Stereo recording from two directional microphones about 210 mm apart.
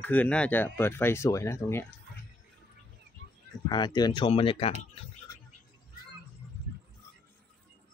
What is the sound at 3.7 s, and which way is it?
Speech, 20° left (ahead or behind).